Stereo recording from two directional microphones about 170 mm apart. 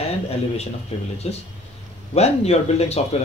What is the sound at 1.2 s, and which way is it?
Speech, 40° left (ahead or behind).